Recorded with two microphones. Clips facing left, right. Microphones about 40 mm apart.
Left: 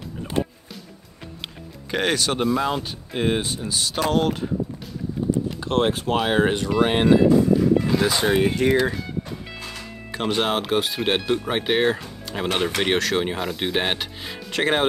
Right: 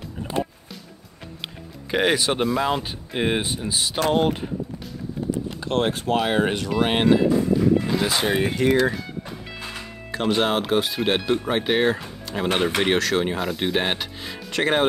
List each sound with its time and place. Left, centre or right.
1.9 s speech: centre
2.4 s speech: centre
5.7 s speech: centre
10.1 s speech: centre